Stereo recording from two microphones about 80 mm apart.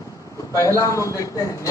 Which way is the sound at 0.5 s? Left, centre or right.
Left.